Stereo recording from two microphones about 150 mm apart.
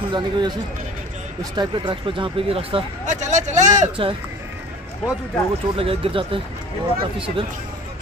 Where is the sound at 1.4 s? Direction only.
30° right (ahead or behind).